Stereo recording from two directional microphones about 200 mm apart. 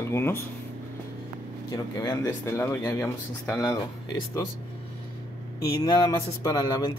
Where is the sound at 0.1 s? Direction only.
10° left (ahead or behind).